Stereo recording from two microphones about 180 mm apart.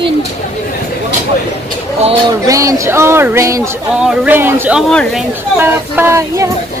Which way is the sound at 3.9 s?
5° right (ahead or behind).